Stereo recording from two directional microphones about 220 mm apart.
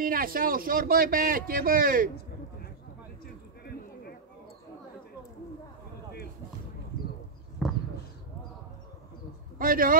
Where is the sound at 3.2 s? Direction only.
45° left (ahead or behind).